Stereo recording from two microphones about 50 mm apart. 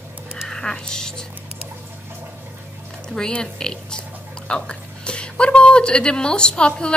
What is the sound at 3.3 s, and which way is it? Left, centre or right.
A woman's voice, centre.